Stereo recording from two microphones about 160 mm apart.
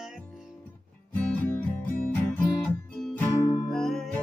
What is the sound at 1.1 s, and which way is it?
Music, 10° left (ahead or behind).